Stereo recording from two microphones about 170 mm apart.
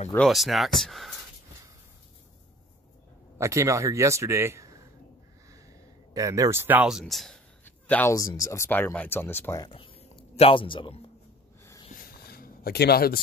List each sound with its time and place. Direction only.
0.1 s speech: centre (ahead or behind)
3.3 s a man's voice: 15° right (ahead or behind); by 7.3 s centre (ahead or behind)
7.6 s speech: 10° left (ahead or behind)
9.7 s a sound: 35° left (ahead or behind)
10.3 s speech: 35° left (ahead or behind)
12.0 s a sound: 65° left (ahead or behind)